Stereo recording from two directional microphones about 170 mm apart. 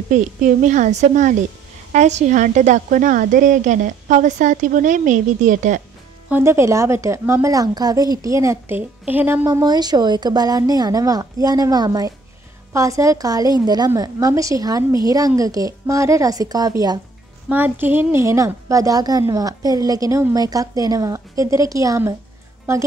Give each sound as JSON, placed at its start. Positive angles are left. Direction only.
{"t": 0.1, "sound": "speech", "side_deg": -50}
{"t": 6.2, "sound": "a woman's voice", "side_deg": -15}
{"t": 9.5, "sound": "a woman's voice", "side_deg": -25}
{"t": 17.5, "sound": "a woman's voice", "side_deg": -10}